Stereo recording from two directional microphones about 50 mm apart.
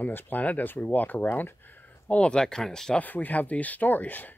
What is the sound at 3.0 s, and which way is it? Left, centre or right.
Speech, left.